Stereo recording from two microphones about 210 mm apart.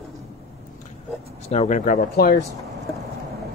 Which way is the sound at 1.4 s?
30° left (ahead or behind).